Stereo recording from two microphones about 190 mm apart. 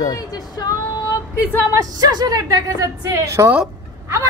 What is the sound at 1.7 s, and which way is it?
A woman's voice, 20° right (ahead or behind).